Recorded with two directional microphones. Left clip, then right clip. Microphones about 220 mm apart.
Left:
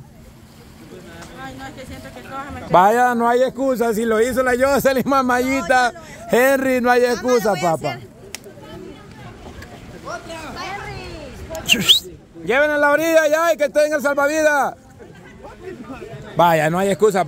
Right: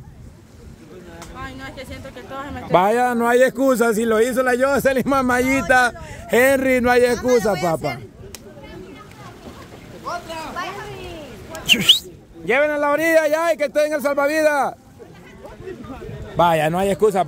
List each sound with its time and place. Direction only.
1.4 s speech: 30° right (ahead or behind)
2.7 s a man's voice: centre (ahead or behind)
3.5 s a man's voice: 20° right (ahead or behind); by 8.0 s centre (ahead or behind)
10.0 s a sound: 10° right (ahead or behind)
11.5 s speech: centre (ahead or behind)
15.9 s a man's voice: 10° left (ahead or behind)